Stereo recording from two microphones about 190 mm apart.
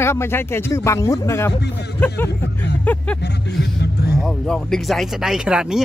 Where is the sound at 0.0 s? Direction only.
15° left (ahead or behind).